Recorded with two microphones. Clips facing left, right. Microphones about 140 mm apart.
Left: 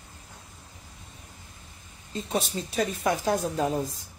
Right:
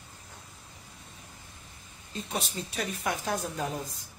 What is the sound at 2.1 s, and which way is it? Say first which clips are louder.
Speech: left 5 dB; 30° left (ahead or behind).